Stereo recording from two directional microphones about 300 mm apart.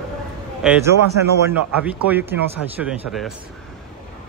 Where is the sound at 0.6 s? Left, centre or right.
Centre.